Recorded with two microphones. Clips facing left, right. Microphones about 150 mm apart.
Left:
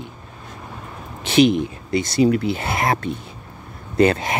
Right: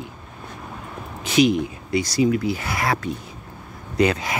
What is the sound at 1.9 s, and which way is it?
Speech, 25° left (ahead or behind).